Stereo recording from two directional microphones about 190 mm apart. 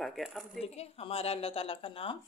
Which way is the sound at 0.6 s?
35° left (ahead or behind).